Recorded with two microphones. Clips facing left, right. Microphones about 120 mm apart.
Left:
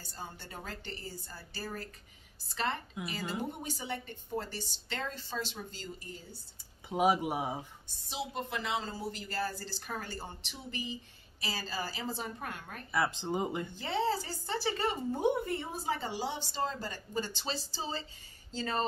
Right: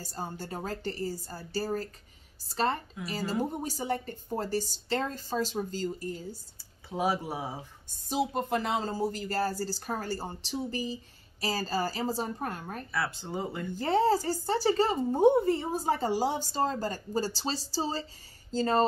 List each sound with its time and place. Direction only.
0.0 s speech: 40° right (ahead or behind)
6.9 s speech: 15° left (ahead or behind)
7.9 s speech: 45° right (ahead or behind)
12.9 s speech: 20° left (ahead or behind)
13.7 s speech: 45° right (ahead or behind)